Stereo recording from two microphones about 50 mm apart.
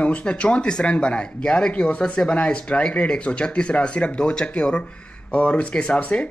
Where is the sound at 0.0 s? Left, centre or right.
Left.